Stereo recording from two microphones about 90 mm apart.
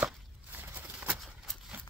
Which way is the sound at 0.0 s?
20° right (ahead or behind).